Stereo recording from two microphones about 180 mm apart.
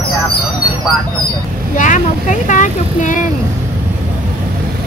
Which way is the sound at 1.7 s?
45° left (ahead or behind).